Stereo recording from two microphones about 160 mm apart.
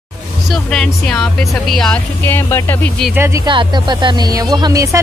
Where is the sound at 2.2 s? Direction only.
15° left (ahead or behind).